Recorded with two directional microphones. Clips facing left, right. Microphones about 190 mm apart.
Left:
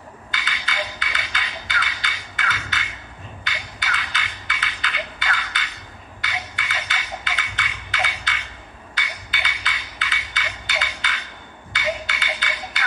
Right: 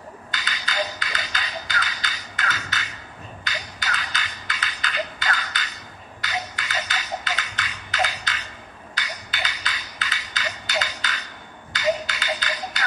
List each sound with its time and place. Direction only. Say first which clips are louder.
0.3 s music: left 1 dB; 40° right (ahead or behind)